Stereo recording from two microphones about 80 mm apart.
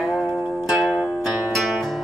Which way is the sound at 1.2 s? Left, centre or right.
Centre.